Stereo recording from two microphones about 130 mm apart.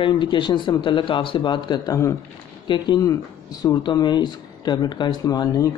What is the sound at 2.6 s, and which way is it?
Speech, 35° left (ahead or behind).